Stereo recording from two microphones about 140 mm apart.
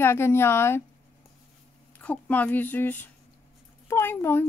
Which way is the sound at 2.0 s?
10° left (ahead or behind).